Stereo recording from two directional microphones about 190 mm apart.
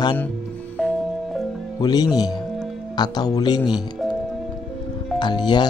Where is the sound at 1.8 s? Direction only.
20° left (ahead or behind).